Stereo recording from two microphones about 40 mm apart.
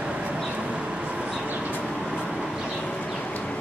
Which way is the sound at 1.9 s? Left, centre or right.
Centre.